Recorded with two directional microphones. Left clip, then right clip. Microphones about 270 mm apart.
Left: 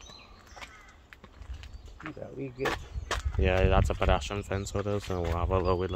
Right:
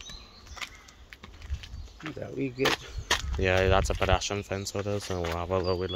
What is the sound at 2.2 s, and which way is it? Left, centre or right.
Speech, right.